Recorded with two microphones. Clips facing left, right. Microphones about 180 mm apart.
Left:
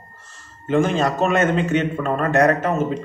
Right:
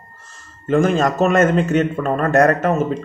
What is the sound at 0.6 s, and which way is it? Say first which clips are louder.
A man's voice: right 3 dB; 45° right (ahead or behind).